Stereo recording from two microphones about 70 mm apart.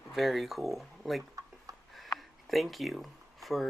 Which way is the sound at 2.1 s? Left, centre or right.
Centre.